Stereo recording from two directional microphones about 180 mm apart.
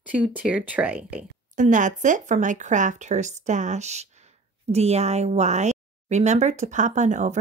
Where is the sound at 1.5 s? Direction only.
45° right (ahead or behind).